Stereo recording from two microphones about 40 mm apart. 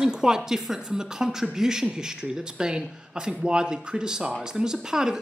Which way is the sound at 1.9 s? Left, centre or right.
Right.